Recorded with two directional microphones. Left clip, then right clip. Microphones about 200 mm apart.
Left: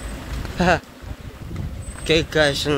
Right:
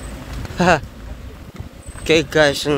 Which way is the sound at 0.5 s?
25° right (ahead or behind).